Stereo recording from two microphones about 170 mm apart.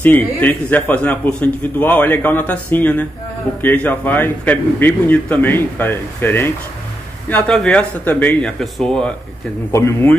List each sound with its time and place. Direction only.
0.0 s a man's voice: 10° left (ahead or behind)
9.7 s a man's voice: 15° left (ahead or behind)